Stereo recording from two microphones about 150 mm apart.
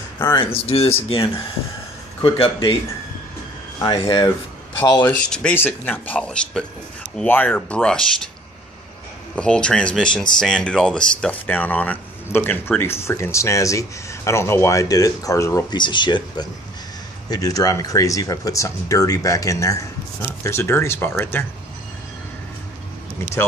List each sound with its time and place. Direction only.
0.2 s speech: 30° left (ahead or behind)
0.7 s speech: 40° left (ahead or behind)
2.2 s speech: 40° left (ahead or behind)
3.8 s speech: 35° left (ahead or behind)
5.0 s speech: 10° left (ahead or behind)
9.3 s speech: 5° left (ahead or behind)